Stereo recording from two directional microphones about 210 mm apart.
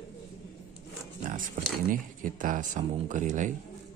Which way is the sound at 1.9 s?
40° right (ahead or behind).